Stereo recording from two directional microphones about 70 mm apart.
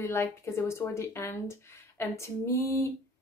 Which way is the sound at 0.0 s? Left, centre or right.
Left.